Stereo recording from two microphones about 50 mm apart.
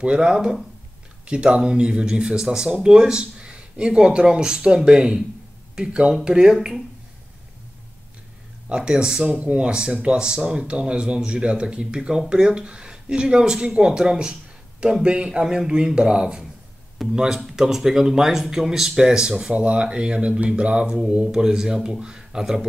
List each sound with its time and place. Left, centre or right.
0.0 s speech: right
8.6 s speech: centre